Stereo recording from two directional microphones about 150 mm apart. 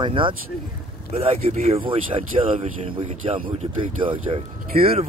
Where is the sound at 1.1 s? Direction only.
45° right (ahead or behind).